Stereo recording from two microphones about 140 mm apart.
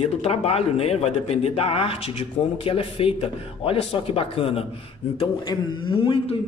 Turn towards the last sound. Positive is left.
turn(degrees=35)  # may be behind; listen again after turning